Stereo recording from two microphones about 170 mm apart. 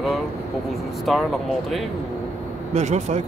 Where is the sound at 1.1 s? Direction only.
Centre (ahead or behind).